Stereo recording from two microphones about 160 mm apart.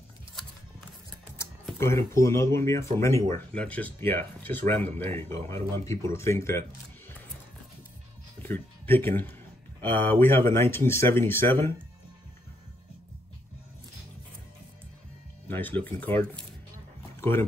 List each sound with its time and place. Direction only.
1.8 s speech: 15° left (ahead or behind)
8.4 s speech: 10° left (ahead or behind)
15.4 s speech: 10° left (ahead or behind)
17.2 s speech: 15° left (ahead or behind)